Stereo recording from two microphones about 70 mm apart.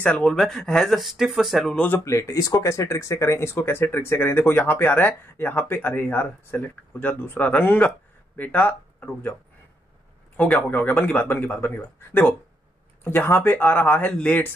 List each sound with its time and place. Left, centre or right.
0.2 s speech: centre
2.0 s speech: left
10.7 s speech: left